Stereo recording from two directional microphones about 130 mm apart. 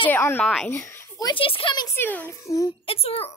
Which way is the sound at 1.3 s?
45° left (ahead or behind).